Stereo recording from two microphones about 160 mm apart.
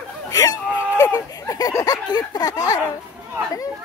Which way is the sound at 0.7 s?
10° right (ahead or behind).